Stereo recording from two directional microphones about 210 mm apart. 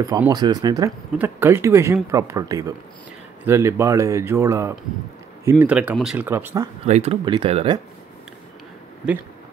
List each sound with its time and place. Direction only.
0.0 s speech: 15° right (ahead or behind)
6.9 s speech: 30° right (ahead or behind)